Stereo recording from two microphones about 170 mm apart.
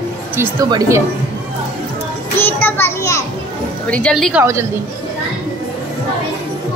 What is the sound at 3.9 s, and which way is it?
Speech, 5° left (ahead or behind).